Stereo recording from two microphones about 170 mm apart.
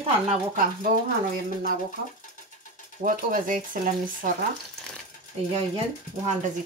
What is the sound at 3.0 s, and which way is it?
Speech, 55° right (ahead or behind).